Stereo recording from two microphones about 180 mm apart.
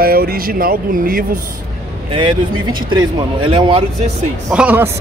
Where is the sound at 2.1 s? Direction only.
30° right (ahead or behind).